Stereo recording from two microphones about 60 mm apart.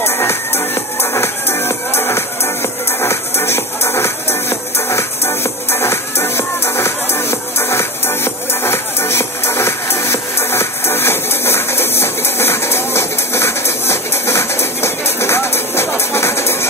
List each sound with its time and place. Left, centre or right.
0.0 s music: left